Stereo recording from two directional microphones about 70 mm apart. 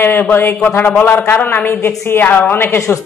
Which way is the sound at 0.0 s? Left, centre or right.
Left.